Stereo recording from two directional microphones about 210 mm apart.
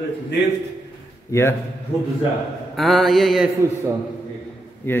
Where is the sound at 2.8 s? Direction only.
Centre (ahead or behind).